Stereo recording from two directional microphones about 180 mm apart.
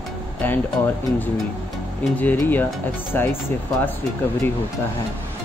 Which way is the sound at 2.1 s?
10° left (ahead or behind).